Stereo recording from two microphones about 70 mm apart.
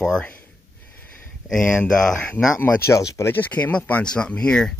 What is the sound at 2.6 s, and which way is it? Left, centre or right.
Speech, left.